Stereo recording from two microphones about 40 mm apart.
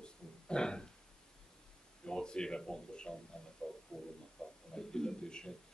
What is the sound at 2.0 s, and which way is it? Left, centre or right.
A man's voice, left.